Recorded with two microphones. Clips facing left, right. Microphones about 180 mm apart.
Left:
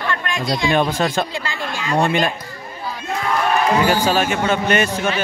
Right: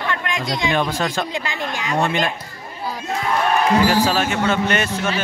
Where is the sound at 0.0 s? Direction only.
15° right (ahead or behind).